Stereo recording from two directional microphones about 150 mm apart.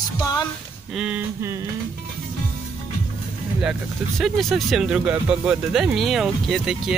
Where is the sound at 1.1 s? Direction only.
20° right (ahead or behind).